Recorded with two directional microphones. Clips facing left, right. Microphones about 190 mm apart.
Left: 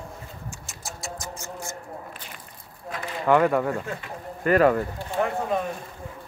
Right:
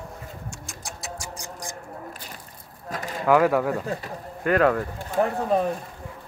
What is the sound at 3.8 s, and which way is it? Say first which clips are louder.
Speech: right 4 dB; 35° right (ahead or behind).